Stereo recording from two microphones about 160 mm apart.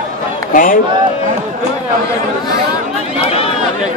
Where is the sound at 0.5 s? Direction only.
60° left (ahead or behind).